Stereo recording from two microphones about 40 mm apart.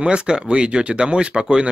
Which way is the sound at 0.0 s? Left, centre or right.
Right.